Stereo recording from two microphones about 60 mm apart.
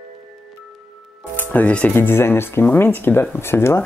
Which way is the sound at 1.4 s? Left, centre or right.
Left.